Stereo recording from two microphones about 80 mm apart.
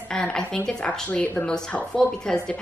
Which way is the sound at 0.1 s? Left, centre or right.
Centre.